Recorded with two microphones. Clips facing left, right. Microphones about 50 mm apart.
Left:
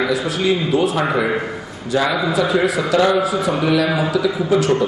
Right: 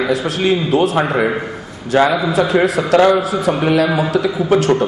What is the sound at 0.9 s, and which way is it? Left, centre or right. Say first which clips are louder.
A man's voice: right 2 dB; right.